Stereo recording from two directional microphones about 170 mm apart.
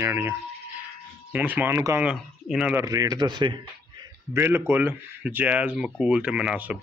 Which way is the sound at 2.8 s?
20° right (ahead or behind).